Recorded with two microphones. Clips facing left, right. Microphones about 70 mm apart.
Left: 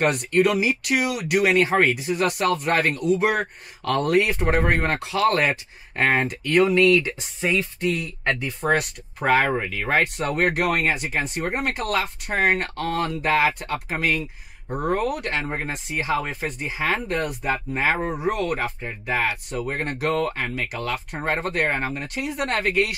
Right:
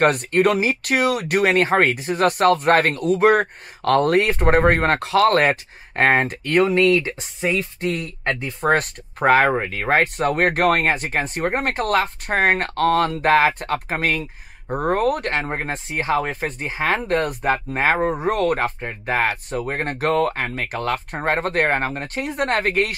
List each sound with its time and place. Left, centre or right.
0.0 s speech: right